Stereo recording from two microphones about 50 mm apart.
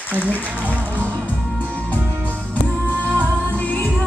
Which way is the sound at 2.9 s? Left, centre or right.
Right.